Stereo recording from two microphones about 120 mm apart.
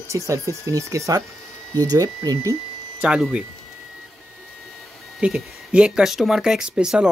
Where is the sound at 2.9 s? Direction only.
5° right (ahead or behind).